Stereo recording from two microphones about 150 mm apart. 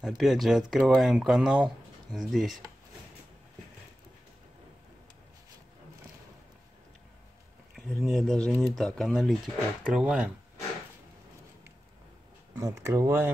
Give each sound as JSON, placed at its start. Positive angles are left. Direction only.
{"t": 0.0, "sound": "speech", "side_deg": 0}
{"t": 7.7, "sound": "speech", "side_deg": 0}
{"t": 12.5, "sound": "speech", "side_deg": -20}